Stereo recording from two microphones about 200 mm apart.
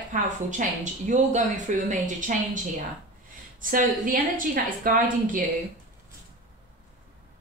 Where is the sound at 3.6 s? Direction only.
40° right (ahead or behind).